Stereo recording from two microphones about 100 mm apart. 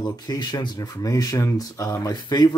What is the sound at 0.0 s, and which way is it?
Speech, 45° left (ahead or behind).